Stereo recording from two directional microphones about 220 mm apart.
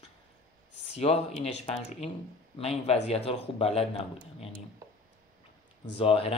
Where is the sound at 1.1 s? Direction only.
25° left (ahead or behind).